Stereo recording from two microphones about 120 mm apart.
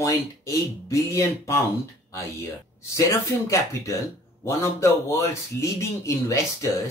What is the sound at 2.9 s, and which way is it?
Speech, 25° left (ahead or behind).